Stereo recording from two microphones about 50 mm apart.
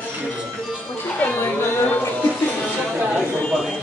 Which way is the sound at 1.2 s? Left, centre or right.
Left.